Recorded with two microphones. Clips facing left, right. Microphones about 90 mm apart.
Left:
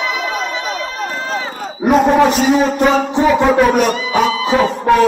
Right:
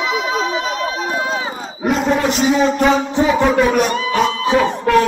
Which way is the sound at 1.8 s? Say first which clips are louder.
Left 5 dB; 60° left (ahead or behind).